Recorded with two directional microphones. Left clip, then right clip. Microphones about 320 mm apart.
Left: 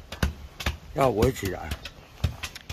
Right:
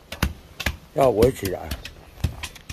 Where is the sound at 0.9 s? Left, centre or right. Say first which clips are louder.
Right 5 dB; centre.